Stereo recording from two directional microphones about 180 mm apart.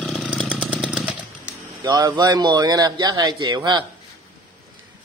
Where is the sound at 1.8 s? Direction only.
20° right (ahead or behind).